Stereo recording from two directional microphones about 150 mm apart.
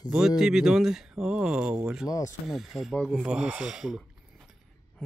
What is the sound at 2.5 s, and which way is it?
Speech, centre (ahead or behind).